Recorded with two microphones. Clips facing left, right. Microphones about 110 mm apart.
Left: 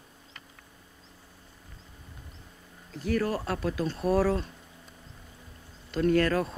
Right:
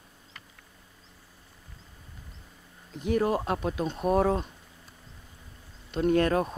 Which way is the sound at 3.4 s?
25° right (ahead or behind).